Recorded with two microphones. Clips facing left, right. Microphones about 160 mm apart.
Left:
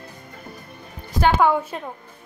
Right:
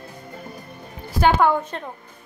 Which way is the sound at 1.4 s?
5° left (ahead or behind).